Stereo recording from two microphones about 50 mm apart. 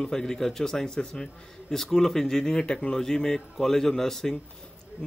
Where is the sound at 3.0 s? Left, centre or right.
Centre.